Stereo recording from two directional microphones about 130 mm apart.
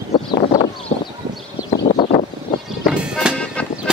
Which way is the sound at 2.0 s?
50° left (ahead or behind).